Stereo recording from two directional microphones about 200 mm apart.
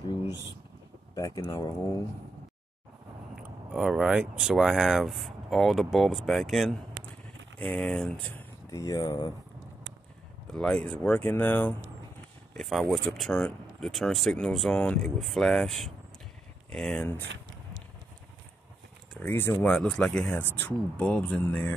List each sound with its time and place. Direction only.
1.1 s speech: 15° left (ahead or behind)
3.3 s speech: centre (ahead or behind)
8.6 s speech: 15° left (ahead or behind)
10.4 s speech: 5° left (ahead or behind)
19.1 s speech: 10° left (ahead or behind)